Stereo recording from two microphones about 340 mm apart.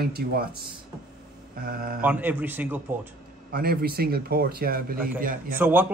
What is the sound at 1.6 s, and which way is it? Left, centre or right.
Speech, right.